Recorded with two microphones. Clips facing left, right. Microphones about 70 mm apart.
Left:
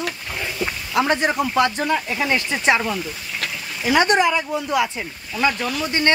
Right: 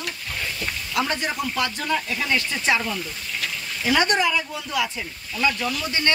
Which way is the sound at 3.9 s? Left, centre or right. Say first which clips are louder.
Left 4 dB; left.